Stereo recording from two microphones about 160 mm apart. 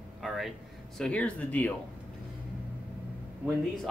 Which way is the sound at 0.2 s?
Centre (ahead or behind).